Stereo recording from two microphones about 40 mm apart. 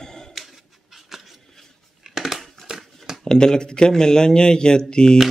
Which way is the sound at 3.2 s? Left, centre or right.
Centre.